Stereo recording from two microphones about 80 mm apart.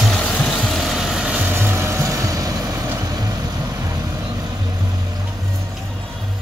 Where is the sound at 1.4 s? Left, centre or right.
Right.